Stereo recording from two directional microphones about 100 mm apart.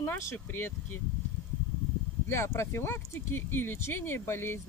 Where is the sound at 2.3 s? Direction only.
25° left (ahead or behind).